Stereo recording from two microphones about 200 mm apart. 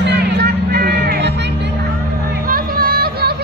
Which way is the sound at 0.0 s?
55° right (ahead or behind).